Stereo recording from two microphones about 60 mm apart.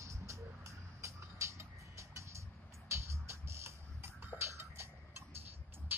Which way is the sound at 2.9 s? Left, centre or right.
Right.